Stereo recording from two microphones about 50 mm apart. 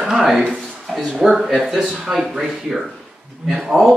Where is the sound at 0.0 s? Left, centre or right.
Centre.